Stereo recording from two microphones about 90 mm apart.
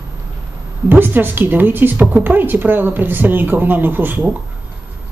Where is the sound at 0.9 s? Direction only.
20° right (ahead or behind).